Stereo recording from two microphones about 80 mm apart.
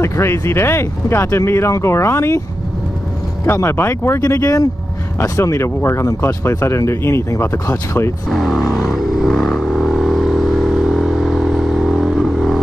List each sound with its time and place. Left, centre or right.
0.0 s speech: left
3.5 s speech: left
4.3 s speech: left
8.3 s speech: centre
8.6 s vehicle: centre